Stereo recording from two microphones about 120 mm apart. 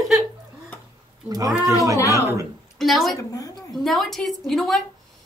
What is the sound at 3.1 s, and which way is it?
Speech, 30° left (ahead or behind).